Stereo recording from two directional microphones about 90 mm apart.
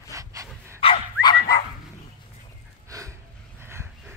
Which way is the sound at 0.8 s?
90° left.